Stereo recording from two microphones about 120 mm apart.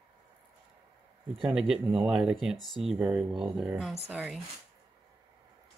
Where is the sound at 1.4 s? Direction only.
5° right (ahead or behind).